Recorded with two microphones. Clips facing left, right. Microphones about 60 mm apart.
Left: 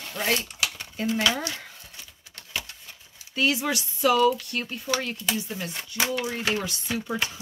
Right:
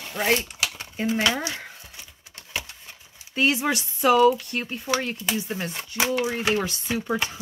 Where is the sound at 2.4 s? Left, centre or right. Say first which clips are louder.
Right 1 dB; right.